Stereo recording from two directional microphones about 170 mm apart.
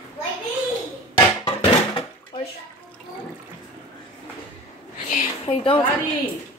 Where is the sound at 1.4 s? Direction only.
35° left (ahead or behind).